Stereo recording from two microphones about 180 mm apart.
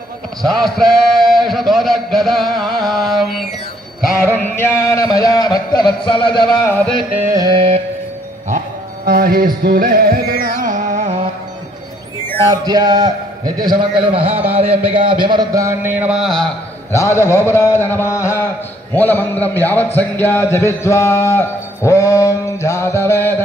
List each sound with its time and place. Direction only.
0.4 s a man's voice: centre (ahead or behind)
2.6 s music: centre (ahead or behind)
4.6 s speech: 15° left (ahead or behind)
6.4 s music: 20° left (ahead or behind)
6.9 s music: centre (ahead or behind)
7.2 s a man's voice: 20° right (ahead or behind)
9.0 s music: 55° right (ahead or behind)
12.4 s a man's voice: 20° right (ahead or behind)
15.2 s speech: 20° right (ahead or behind); by 16.4 s centre (ahead or behind)
16.9 s music: 15° left (ahead or behind)